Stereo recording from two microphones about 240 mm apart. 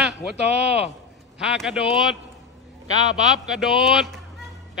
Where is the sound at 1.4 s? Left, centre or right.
Centre.